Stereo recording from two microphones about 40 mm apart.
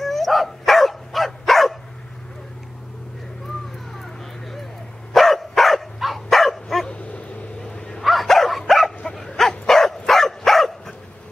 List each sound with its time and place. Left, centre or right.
0.0 s dog: centre
3.9 s dog: centre
6.9 s a sound: left
7.7 s dog: left
8.0 s dog: centre